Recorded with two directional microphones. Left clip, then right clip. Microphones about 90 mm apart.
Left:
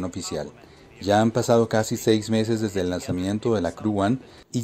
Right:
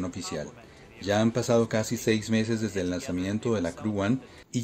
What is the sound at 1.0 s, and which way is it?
Speech, 55° left (ahead or behind).